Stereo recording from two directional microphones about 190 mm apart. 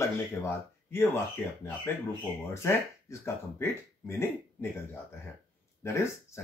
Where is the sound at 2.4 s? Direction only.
15° left (ahead or behind).